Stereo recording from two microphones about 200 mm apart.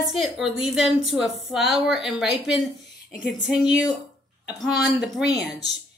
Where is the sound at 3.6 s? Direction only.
20° left (ahead or behind).